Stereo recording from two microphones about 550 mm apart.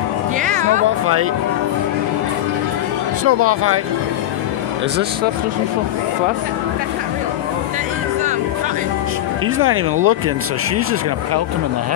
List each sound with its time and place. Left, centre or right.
0.4 s music: centre
3.3 s speech: right
9.6 s speech: right